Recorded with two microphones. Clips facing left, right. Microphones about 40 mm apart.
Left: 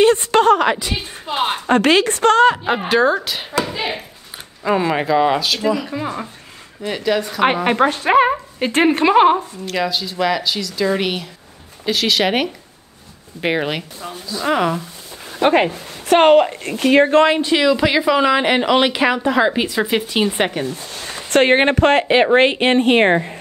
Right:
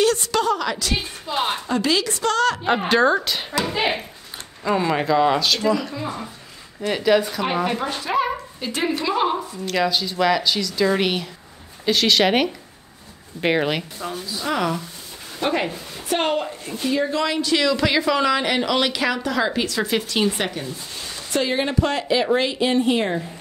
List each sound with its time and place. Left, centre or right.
0.0 s a sound: left
0.7 s speech: left
1.7 s speech: left
2.6 s a woman's voice: centre
4.6 s speech: centre
5.9 s speech: left
6.9 s a woman's voice: centre
7.6 s speech: left
9.7 s a woman's voice: centre
14.4 s speech: left
15.3 s speech: left
16.1 s a woman's voice: left
17.2 s speech: left
20.5 s speech: left